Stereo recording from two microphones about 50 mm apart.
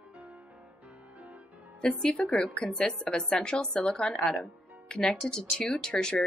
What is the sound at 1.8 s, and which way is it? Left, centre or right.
A woman's voice, centre.